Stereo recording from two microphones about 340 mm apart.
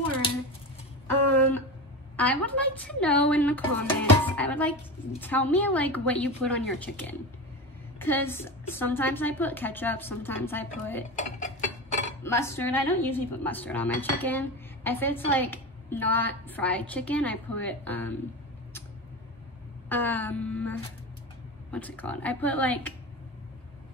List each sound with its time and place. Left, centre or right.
1.0 s a sound: centre
2.4 s a woman's voice: centre
11.1 s dishes: left
12.2 s a woman's voice: centre
19.9 s a woman's voice: centre